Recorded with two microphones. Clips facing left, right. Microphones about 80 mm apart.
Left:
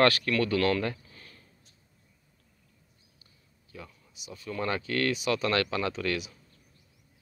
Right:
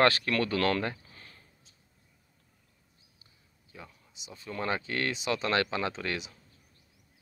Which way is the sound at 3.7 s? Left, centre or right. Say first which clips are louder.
Left 3 dB; right.